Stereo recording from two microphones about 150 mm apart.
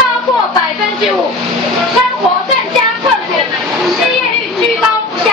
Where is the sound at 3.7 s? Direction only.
Centre (ahead or behind).